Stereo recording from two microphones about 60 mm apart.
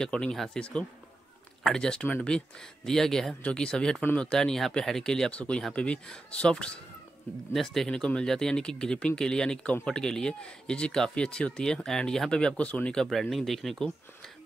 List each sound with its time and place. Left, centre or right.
0.0 s speech: centre
5.3 s speech: centre
7.5 s speech: centre; by 12.9 s left
12.9 s speech: centre